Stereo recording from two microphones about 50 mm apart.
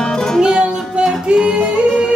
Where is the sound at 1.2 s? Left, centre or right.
Right.